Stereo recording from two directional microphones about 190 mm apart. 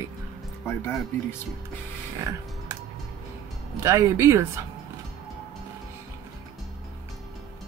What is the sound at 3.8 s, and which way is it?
Speech, 15° right (ahead or behind).